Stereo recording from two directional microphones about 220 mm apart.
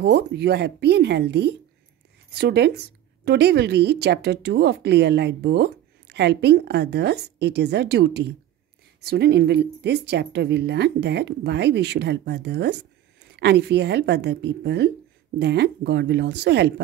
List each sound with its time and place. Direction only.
0.0 s a woman's voice: 50° right (ahead or behind)